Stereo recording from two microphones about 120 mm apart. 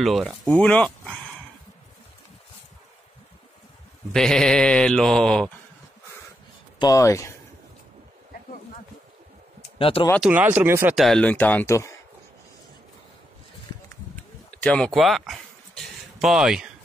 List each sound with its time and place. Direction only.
0.0 s speech: centre (ahead or behind)
4.1 s speech: 5° left (ahead or behind)
6.8 s speech: 25° left (ahead or behind)
9.8 s speech: 50° left (ahead or behind)
10.2 s speech: 15° right (ahead or behind)
11.0 s speech: centre (ahead or behind)
11.2 s speech: 15° left (ahead or behind)
14.1 s a sound: 10° left (ahead or behind)
14.9 s a sound: centre (ahead or behind)